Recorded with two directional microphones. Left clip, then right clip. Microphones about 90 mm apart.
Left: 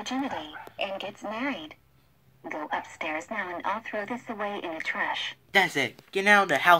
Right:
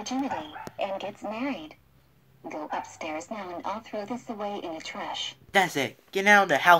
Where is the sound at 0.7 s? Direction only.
25° left (ahead or behind).